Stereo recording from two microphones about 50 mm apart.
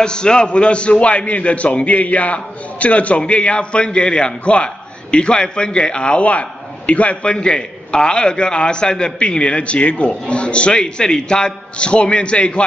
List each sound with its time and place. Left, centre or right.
0.0 s a man's voice: centre